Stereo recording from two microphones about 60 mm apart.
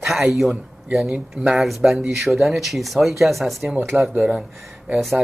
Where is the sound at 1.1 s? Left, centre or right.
Centre.